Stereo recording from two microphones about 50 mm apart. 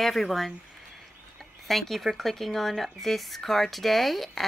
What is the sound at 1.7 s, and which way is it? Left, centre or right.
Speech, centre.